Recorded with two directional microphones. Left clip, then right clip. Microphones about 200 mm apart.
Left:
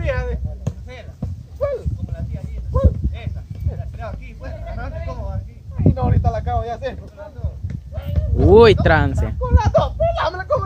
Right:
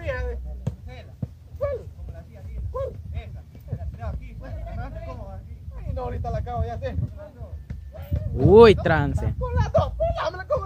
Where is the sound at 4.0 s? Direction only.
20° left (ahead or behind).